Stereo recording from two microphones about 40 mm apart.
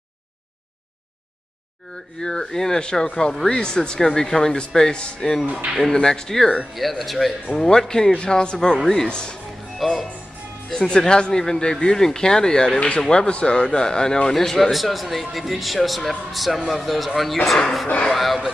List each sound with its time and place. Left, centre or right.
2.1 s speech: centre
4.9 s speech: left
5.5 s speech: right
5.9 s speech: centre
6.7 s a man's voice: centre
9.8 s music: centre
10.7 s speech: centre
14.3 s a man's voice: centre